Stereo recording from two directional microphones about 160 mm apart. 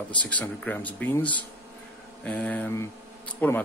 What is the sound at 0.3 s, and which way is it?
Speech, 10° left (ahead or behind).